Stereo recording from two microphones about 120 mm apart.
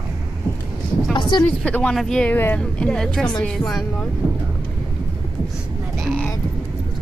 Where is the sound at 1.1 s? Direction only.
40° left (ahead or behind).